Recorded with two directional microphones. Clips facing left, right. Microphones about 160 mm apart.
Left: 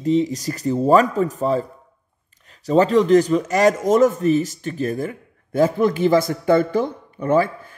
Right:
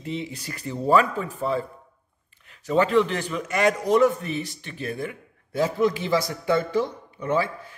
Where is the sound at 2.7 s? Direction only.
40° left (ahead or behind).